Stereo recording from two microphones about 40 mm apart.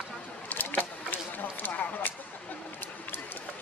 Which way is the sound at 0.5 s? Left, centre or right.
Left.